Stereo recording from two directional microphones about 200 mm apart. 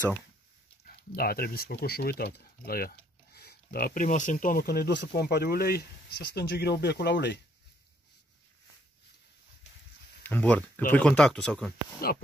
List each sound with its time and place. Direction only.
0.8 s speech: 50° left (ahead or behind)
10.2 s speech: 10° left (ahead or behind)